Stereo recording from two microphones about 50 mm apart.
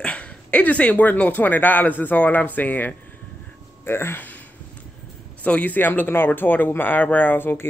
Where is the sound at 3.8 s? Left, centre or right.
Left.